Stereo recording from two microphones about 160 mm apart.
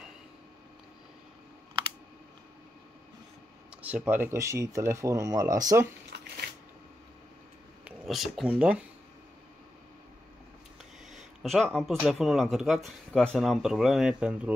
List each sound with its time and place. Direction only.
3.7 s speech: 10° right (ahead or behind)
7.8 s speech: 5° right (ahead or behind)
11.1 s speech: centre (ahead or behind)